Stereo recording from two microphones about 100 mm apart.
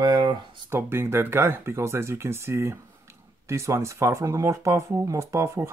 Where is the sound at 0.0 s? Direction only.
45° right (ahead or behind).